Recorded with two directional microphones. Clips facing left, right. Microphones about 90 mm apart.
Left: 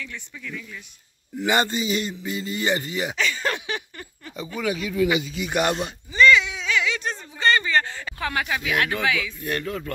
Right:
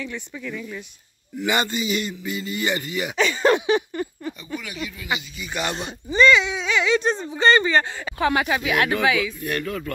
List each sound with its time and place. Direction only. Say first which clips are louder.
0.0 s speech: right 5 dB; 20° right (ahead or behind)
1.4 s speech: left 1 dB; 35° left (ahead or behind)
3.2 s speech: right 12 dB; 20° right (ahead or behind)
5.3 s speech: left 6 dB; 90° left
5.6 s speech: left 4 dB; 45° left (ahead or behind)
6.0 s a sound: right 1 dB; 25° right (ahead or behind)
8.0 s speech: right 6 dB; 15° right (ahead or behind)
9.4 s speech: right 1 dB; 25° left (ahead or behind)